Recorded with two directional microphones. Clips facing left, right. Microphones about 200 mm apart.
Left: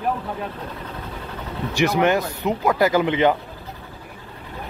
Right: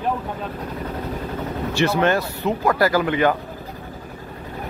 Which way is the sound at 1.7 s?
15° left (ahead or behind).